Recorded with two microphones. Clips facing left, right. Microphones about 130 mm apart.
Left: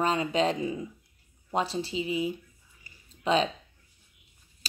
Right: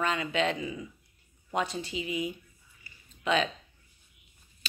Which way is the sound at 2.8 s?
35° left (ahead or behind).